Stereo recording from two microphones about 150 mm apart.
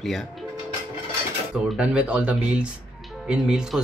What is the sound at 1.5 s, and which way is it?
Speech, 5° right (ahead or behind).